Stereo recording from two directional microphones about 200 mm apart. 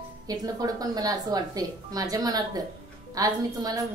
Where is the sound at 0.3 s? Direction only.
20° right (ahead or behind).